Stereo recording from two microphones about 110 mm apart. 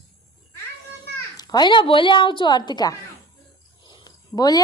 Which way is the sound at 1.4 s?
40° left (ahead or behind).